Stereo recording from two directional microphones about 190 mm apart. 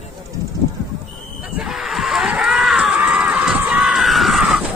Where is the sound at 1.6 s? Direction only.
Centre (ahead or behind).